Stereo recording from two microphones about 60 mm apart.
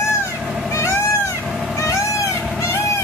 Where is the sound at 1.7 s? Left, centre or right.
Left.